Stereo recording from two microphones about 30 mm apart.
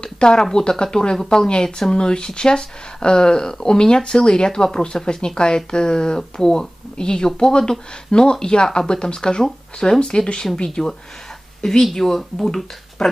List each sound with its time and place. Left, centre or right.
0.0 s speech: left
11.9 s speech: centre